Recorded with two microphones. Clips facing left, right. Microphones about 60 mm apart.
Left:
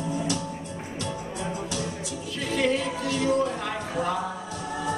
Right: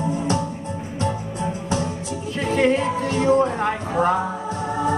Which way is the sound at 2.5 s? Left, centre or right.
Right.